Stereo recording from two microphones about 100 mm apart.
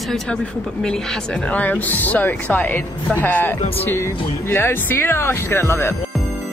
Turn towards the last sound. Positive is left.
turn(degrees=25)  # may be behind; listen again after turning